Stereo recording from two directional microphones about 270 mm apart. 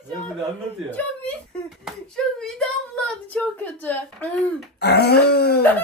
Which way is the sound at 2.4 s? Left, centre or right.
Centre.